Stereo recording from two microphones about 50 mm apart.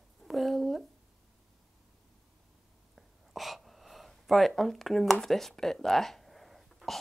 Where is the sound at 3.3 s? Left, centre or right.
Centre.